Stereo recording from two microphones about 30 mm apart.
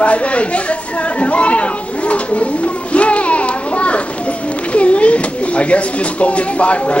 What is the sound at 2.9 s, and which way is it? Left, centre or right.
Children playing, left.